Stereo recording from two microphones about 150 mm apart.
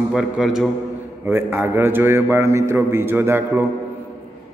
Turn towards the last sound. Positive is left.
turn(degrees=-15)  # may be behind; listen again after turning